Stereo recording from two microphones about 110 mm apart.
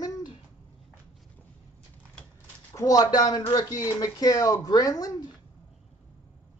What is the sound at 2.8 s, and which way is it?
Speech, 35° left (ahead or behind).